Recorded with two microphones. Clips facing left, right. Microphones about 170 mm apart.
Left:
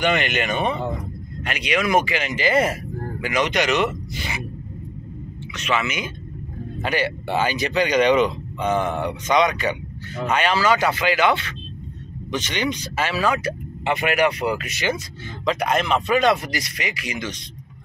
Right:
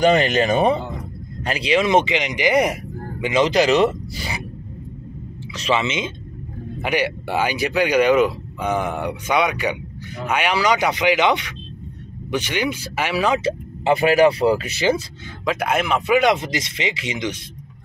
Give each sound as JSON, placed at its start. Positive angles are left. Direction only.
{"t": 0.0, "sound": "speech", "side_deg": -35}
{"t": 5.6, "sound": "speech", "side_deg": -30}
{"t": 15.4, "sound": "speech", "side_deg": -5}
{"t": 16.3, "sound": "speech", "side_deg": -20}